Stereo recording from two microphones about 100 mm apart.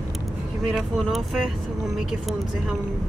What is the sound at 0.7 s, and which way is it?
Speech, centre (ahead or behind).